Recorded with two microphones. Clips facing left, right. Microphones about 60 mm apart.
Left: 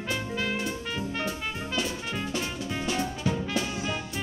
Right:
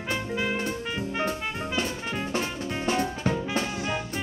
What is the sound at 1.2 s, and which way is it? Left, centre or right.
Music, right.